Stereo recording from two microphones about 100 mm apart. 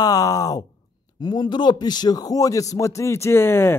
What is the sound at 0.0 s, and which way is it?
Speech, 35° left (ahead or behind).